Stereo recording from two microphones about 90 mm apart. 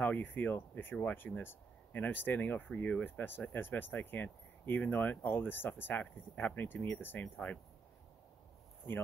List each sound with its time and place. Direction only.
0.0 s speech: 20° left (ahead or behind)